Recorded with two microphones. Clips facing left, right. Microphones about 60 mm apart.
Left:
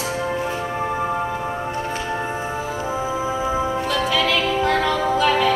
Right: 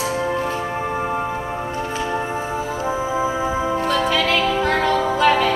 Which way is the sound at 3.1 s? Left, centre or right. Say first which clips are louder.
Right 2 dB; centre.